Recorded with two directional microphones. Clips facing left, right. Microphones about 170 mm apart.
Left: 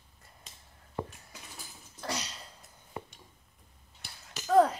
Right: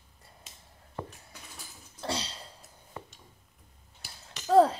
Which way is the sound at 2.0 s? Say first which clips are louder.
Right 3 dB; 30° right (ahead or behind).